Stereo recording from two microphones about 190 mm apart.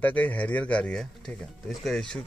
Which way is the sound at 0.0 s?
10° left (ahead or behind).